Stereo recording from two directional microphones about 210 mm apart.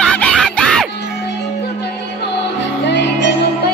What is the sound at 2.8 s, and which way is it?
Music, 55° left (ahead or behind).